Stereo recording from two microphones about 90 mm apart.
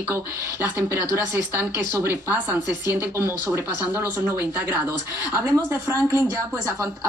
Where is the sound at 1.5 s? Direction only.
25° right (ahead or behind).